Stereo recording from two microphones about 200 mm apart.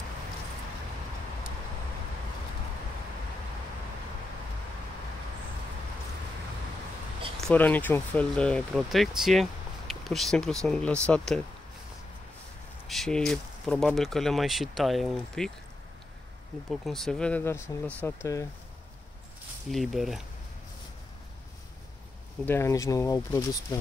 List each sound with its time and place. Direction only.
7.4 s speech: 10° left (ahead or behind)
12.8 s speech: centre (ahead or behind)
16.8 s speech: centre (ahead or behind)
19.7 s speech: centre (ahead or behind)
22.4 s speech: 10° left (ahead or behind)